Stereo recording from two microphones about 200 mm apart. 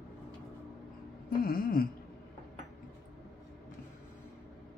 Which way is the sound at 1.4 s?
45° left (ahead or behind).